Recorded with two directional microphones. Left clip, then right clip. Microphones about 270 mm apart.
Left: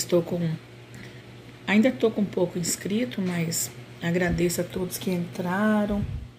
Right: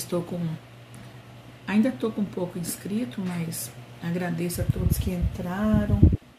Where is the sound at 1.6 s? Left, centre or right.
Centre.